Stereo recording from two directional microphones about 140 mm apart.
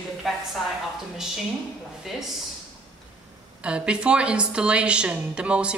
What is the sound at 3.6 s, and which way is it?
A woman's voice, 5° right (ahead or behind).